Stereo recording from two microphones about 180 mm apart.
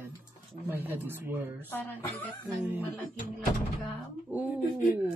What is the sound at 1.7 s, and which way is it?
Speech, 10° left (ahead or behind).